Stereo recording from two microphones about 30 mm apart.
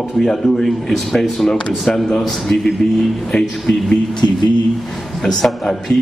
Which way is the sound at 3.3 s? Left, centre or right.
Left.